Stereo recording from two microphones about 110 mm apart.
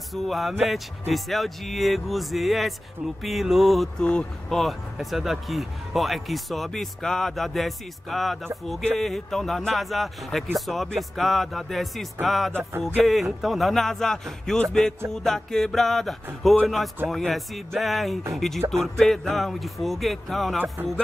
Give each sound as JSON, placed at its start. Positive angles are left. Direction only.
{"t": 0.1, "sound": "speech", "side_deg": 0}